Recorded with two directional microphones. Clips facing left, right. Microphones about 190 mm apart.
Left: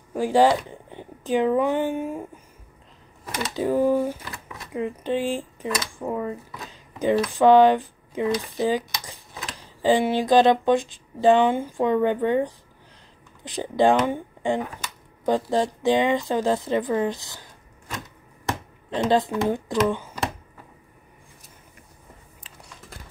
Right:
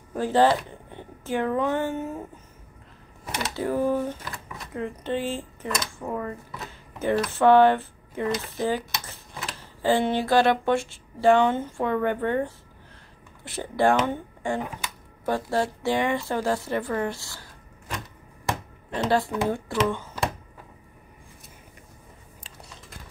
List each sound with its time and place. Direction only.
0.1 s speech: 10° left (ahead or behind)
3.5 s a woman's voice: 15° left (ahead or behind)
18.9 s a woman's voice: 20° left (ahead or behind)